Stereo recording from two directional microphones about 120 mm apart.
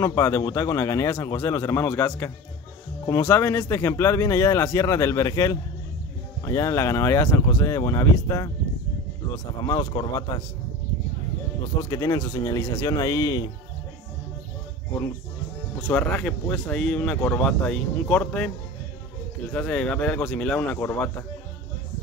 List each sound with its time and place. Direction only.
0.0 s speech: 25° left (ahead or behind)
11.8 s speech: 30° left (ahead or behind)
15.9 s speech: 10° left (ahead or behind)
19.5 s speech: 10° left (ahead or behind)